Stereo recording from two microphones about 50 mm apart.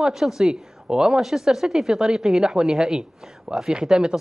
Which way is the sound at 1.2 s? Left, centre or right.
Centre.